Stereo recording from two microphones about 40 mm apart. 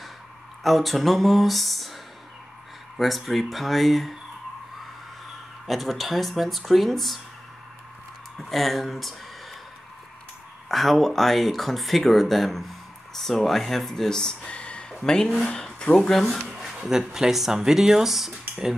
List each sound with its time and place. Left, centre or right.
0.7 s speech: centre
3.0 s speech: centre
5.7 s speech: centre
8.4 s speech: centre
10.7 s speech: centre
14.4 s a sound: left
15.0 s speech: centre
16.0 s a sound: centre
16.9 s speech: centre